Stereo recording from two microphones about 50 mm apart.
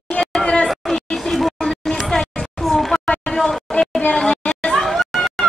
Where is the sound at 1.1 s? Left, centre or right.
Centre.